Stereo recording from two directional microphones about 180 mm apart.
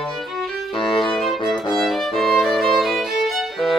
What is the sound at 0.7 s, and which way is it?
Music, 30° left (ahead or behind).